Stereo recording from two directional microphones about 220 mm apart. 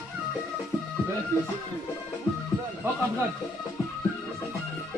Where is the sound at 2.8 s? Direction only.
10° right (ahead or behind).